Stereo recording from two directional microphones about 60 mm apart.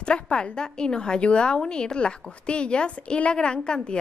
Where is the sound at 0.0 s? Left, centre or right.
Centre.